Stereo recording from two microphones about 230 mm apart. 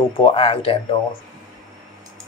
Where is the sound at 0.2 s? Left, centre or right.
Left.